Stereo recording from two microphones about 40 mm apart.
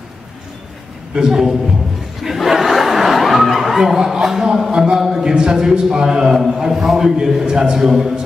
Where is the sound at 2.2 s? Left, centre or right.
Centre.